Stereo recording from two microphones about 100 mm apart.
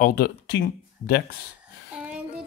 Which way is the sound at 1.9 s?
10° right (ahead or behind).